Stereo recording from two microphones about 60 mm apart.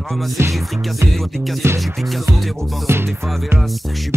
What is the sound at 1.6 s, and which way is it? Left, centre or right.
Music, right.